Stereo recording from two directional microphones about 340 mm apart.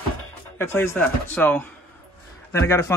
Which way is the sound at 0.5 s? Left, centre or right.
Centre.